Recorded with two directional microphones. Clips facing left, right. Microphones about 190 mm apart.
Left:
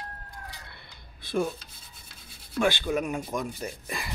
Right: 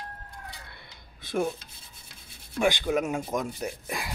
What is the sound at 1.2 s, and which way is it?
Rub, 15° right (ahead or behind).